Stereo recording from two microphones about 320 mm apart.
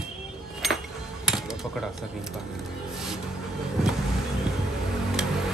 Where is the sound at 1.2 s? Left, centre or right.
Centre.